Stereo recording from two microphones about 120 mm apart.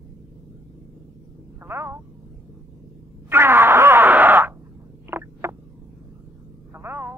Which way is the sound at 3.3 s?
20° right (ahead or behind).